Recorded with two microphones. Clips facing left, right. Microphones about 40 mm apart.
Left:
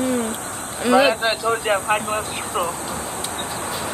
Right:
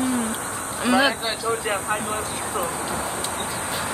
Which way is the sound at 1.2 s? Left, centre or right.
Left.